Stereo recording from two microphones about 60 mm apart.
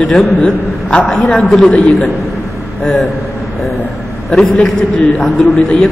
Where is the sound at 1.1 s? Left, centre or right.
Centre.